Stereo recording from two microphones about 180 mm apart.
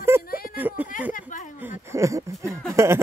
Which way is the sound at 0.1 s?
15° right (ahead or behind).